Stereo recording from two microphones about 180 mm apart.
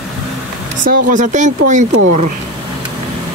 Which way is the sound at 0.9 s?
50° right (ahead or behind).